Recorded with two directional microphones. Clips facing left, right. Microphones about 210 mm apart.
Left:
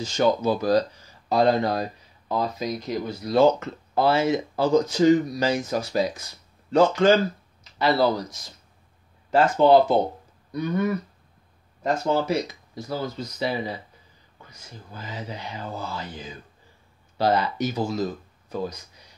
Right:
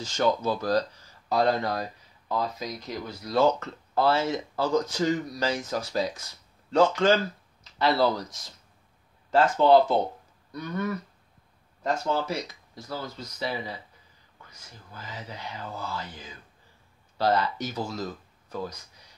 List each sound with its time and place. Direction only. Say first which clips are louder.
0.0 s speech: left 4 dB; 15° left (ahead or behind)